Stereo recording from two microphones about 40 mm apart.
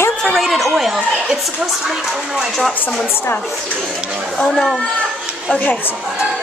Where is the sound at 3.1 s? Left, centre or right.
Left.